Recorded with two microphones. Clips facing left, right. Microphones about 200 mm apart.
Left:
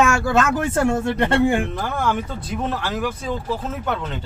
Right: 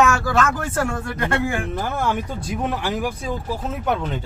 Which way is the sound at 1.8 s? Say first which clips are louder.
Even; 5° right (ahead or behind).